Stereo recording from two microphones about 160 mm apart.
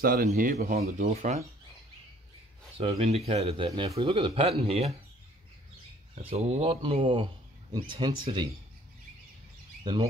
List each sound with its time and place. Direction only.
0.0 s speech: 65° right (ahead or behind)
0.7 s speech: 40° right (ahead or behind)
2.8 s speech: 40° right (ahead or behind)
6.2 s speech: 40° right (ahead or behind)